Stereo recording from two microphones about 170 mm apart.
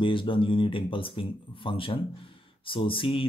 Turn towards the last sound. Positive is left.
turn(degrees=30)  # may be behind; listen again after turning